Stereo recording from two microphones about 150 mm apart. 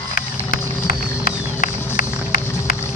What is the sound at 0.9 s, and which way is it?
Vehicle, 70° left (ahead or behind).